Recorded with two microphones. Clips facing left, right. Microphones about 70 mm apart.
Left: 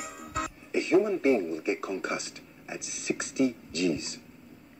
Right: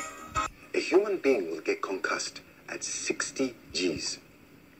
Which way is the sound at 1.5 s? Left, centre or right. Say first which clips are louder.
Even; right.